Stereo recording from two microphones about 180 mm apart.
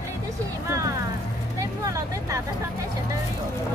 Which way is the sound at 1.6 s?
15° right (ahead or behind).